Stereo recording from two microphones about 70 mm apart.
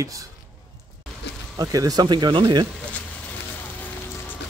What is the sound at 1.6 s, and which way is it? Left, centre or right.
Speech, right.